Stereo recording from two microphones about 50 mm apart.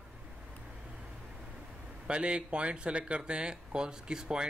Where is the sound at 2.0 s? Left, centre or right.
Right.